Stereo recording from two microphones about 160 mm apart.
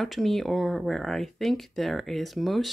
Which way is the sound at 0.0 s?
Centre (ahead or behind).